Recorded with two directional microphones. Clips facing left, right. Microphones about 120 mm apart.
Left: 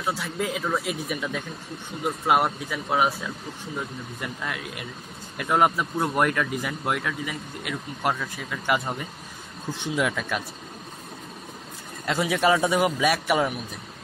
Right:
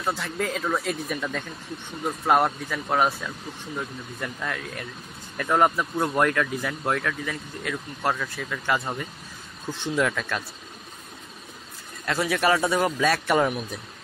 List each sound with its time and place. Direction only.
0.0 s speech: 5° left (ahead or behind)
4.2 s speech: 10° left (ahead or behind)
12.1 s speech: 20° left (ahead or behind)